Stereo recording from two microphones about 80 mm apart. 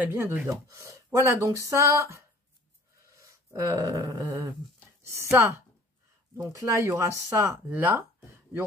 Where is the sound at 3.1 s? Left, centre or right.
Right.